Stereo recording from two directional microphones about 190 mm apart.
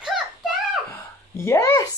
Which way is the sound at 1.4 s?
15° left (ahead or behind).